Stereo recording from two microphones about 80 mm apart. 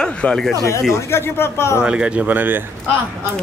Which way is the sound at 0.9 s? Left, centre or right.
Left.